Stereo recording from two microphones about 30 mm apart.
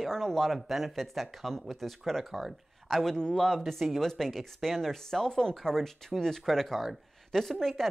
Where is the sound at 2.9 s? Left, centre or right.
Centre.